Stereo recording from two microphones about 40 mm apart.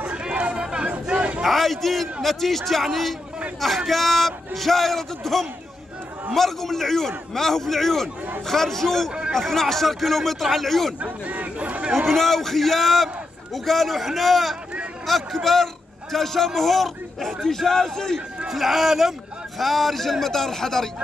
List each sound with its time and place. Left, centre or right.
0.1 s a sound: right
0.7 s chatter: right
1.4 s a man's voice: centre
11.0 s a sound: right
12.1 s a man's voice: centre
18.5 s a man's voice: centre